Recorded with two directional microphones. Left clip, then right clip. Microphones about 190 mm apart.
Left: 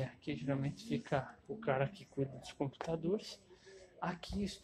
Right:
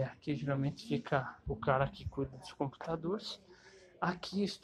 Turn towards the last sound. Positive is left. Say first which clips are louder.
# right 6 dB
turn(degrees=-30)  # may be behind; listen again after turning